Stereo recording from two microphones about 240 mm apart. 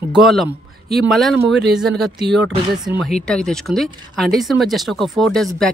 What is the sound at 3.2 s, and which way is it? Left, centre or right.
Speech, centre.